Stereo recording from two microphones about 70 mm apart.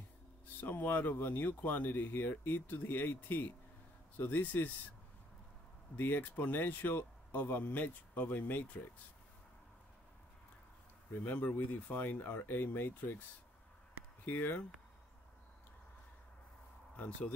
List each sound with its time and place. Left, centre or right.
0.6 s speech: left
5.9 s speech: left
11.2 s speech: left
14.2 s speech: left
16.9 s speech: centre